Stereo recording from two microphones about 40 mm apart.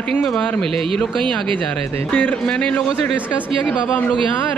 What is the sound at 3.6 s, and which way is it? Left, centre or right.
Speech, left.